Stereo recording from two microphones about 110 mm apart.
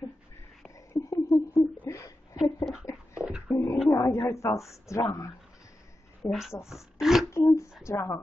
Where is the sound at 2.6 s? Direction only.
5° right (ahead or behind).